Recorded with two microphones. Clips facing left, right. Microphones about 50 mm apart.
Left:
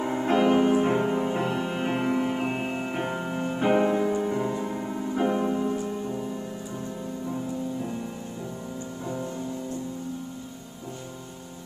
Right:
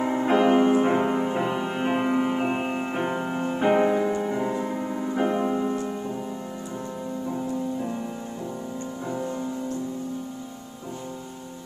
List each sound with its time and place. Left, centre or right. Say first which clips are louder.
0.0 s music: right 2 dB; centre